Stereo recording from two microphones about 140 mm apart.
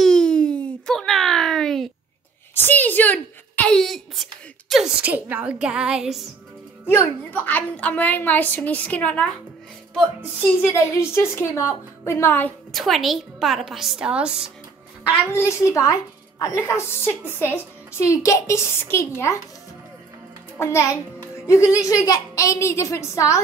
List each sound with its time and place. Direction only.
0.0 s a sound: 5° left (ahead or behind)
2.5 s a sound: 15° left (ahead or behind)
5.0 s a woman's voice: 10° right (ahead or behind)
6.9 s a woman's voice: 15° left (ahead or behind)
10.6 s a woman's voice: 20° left (ahead or behind)
12.7 s a woman's voice: centre (ahead or behind)
15.2 s a woman's voice: 20° left (ahead or behind)
20.5 s a woman's voice: 20° left (ahead or behind)